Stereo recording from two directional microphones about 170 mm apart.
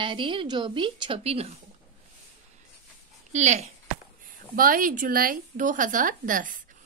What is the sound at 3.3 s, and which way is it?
Speech, 40° right (ahead or behind).